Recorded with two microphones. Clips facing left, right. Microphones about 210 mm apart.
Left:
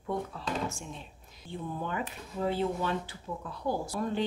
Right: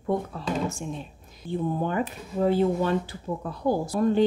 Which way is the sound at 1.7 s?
45° right (ahead or behind).